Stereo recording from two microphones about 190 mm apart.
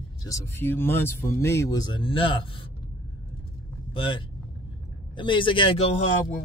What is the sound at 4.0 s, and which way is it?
Speech, 25° left (ahead or behind).